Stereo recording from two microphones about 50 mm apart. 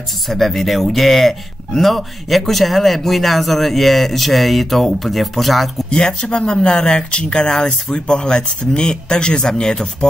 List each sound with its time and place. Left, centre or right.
0.3 s speech: centre
5.9 s speech: centre